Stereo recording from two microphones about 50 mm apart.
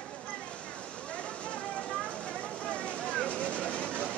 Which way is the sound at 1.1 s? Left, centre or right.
Left.